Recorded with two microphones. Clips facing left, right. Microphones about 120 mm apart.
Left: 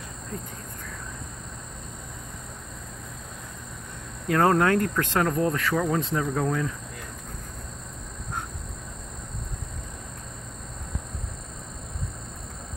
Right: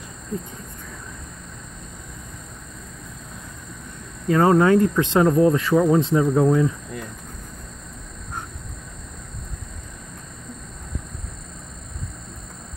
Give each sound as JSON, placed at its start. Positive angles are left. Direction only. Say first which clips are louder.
{"t": 4.3, "sound": "speech", "louder": "right 5 dB", "side_deg": -5}
{"t": 5.0, "sound": "speech", "louder": "right 8 dB", "side_deg": -20}